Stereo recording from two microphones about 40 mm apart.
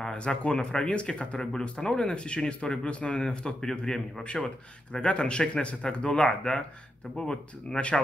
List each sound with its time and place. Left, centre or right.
0.1 s speech: left
1.4 s speech: centre
4.2 s speech: left